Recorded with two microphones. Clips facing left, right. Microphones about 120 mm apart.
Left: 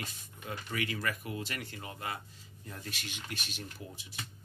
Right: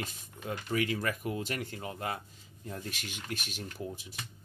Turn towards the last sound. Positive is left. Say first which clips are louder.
# right 5 dB
turn(degrees=-45)  # may be behind; listen again after turning